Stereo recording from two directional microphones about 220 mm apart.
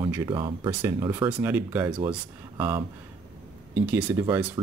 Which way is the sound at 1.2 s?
5° right (ahead or behind).